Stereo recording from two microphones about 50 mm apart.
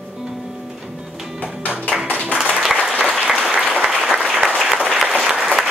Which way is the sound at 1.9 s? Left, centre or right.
Right.